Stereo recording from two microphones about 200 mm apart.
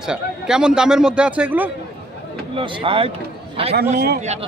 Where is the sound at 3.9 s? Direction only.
40° right (ahead or behind).